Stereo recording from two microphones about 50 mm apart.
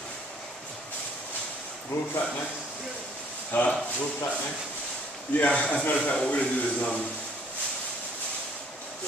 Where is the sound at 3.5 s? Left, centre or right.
Left.